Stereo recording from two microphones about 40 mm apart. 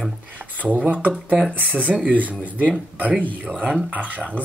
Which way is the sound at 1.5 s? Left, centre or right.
Right.